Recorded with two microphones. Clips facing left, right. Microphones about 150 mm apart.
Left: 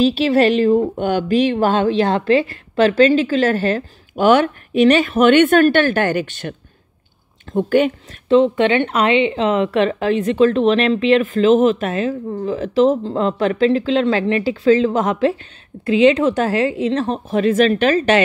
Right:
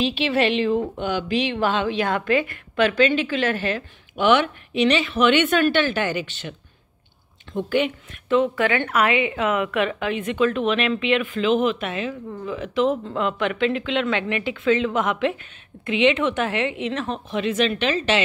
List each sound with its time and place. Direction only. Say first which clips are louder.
0.0 s a woman's voice: left 7 dB; 40° left (ahead or behind)
2.0 s a woman's voice: left 6 dB; 30° left (ahead or behind); by 6.5 s 50° left (ahead or behind)
7.5 s a woman's voice: left 7 dB; 50° left (ahead or behind)
8.3 s a woman's voice: left 6 dB; 30° left (ahead or behind); by 18.2 s 50° left (ahead or behind)